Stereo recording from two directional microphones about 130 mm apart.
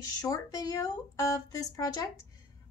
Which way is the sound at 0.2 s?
30° left (ahead or behind).